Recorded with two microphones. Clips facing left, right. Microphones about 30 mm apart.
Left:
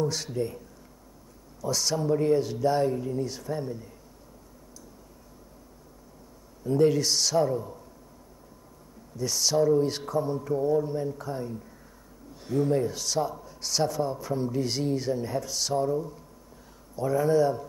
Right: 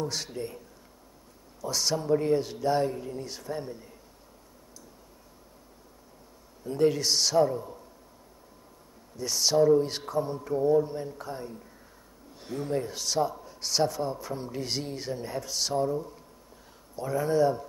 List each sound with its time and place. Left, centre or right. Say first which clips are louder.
0.0 s speech: left 4 dB; centre
1.7 s speech: even; centre
6.8 s speech: left 1 dB; centre
9.2 s speech: right 1 dB; centre
13.4 s a sound: even; right
13.7 s speech: left 1 dB; centre
17.0 s speech: left 2 dB; centre